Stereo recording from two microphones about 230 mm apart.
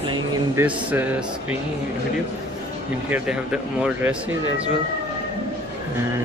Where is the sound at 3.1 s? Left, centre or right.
Centre.